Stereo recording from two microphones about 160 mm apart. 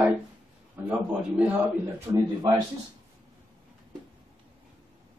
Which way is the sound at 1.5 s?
15° right (ahead or behind).